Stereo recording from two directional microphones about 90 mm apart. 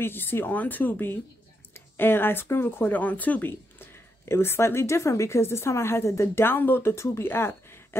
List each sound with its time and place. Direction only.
0.0 s speech: 25° left (ahead or behind)